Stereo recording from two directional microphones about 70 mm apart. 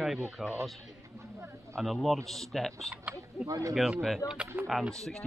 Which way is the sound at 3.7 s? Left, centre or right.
Centre.